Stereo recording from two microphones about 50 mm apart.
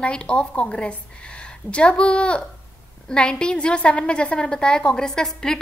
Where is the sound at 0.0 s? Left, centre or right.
Left.